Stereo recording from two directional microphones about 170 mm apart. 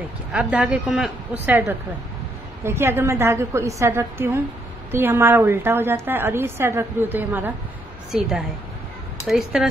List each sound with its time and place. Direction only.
0.3 s a woman's voice: 5° right (ahead or behind)